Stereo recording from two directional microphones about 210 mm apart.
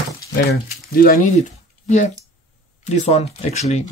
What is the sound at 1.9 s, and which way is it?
Speech, 35° left (ahead or behind).